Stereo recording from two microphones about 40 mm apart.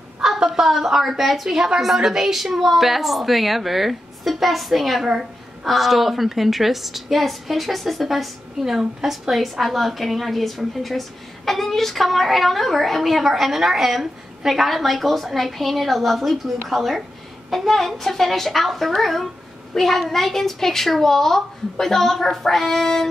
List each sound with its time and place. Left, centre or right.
0.2 s a woman's voice: centre
5.0 s a sound: centre
5.7 s a woman's voice: centre